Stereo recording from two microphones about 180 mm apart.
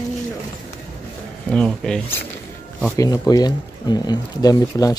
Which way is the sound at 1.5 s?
5° left (ahead or behind).